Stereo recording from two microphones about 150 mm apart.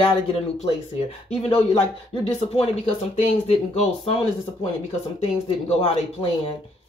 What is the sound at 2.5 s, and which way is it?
Speech, 45° left (ahead or behind).